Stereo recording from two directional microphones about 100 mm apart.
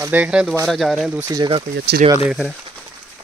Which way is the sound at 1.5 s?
75° right (ahead or behind).